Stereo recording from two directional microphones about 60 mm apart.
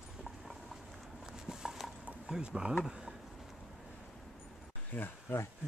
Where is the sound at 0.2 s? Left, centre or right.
Centre.